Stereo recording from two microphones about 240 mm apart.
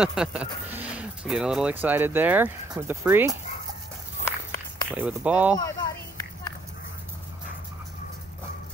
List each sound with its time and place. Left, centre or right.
0.0 s speech: centre
4.2 s walk: centre
4.9 s speech: centre
5.5 s a sound: centre